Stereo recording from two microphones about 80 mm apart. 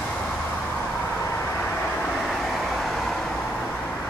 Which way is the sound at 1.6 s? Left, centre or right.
Centre.